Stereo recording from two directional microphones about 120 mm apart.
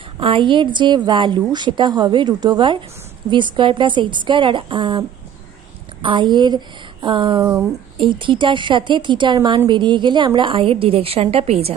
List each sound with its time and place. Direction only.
0.2 s a woman's voice: 45° right (ahead or behind)
6.0 s a woman's voice: 40° right (ahead or behind); by 11.7 s 60° right (ahead or behind)